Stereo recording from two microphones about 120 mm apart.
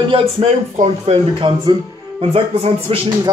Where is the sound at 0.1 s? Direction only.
50° right (ahead or behind).